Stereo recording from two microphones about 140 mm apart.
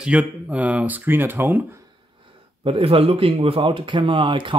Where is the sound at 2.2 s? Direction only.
40° right (ahead or behind).